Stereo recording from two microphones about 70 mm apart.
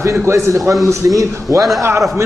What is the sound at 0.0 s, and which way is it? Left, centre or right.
A man's voice, right.